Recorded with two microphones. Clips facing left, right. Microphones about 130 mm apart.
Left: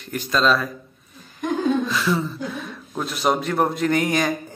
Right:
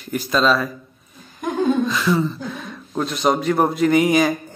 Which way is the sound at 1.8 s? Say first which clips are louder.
Right 3 dB; centre (ahead or behind).